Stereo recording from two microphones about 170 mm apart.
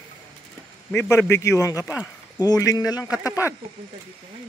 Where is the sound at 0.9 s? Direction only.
15° left (ahead or behind).